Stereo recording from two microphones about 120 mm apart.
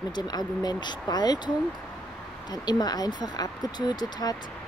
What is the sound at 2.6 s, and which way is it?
Speech, 35° left (ahead or behind).